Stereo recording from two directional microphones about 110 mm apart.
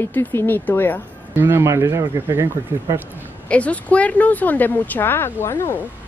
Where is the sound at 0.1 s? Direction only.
20° left (ahead or behind).